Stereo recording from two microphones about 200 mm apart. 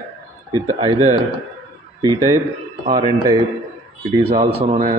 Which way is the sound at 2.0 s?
20° right (ahead or behind).